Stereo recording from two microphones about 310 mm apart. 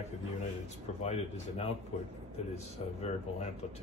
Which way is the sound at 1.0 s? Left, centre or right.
Centre.